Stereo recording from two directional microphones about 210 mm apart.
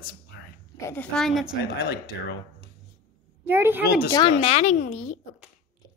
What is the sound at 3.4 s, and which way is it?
Speech, 10° right (ahead or behind).